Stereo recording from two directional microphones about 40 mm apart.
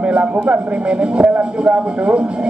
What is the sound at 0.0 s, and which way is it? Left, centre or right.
A man's voice, right.